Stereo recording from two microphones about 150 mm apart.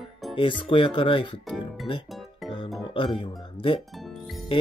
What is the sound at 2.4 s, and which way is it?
Music, 35° left (ahead or behind).